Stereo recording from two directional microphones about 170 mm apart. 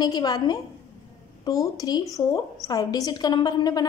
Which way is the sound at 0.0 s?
25° left (ahead or behind).